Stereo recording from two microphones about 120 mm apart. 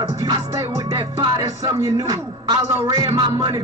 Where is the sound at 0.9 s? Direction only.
30° right (ahead or behind).